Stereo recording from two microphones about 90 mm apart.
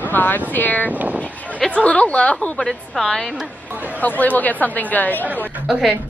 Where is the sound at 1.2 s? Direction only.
15° left (ahead or behind).